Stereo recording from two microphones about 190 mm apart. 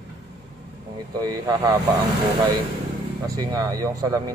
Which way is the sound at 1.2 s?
20° right (ahead or behind).